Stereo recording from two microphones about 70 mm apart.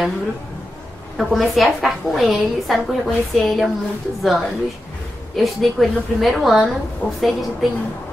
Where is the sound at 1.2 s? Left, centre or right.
Centre.